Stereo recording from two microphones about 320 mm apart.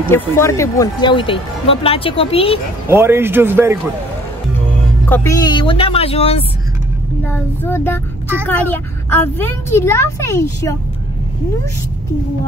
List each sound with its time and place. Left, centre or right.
0.1 s speech: centre
2.9 s a man's voice: centre
5.0 s speech: centre
7.2 s speech: centre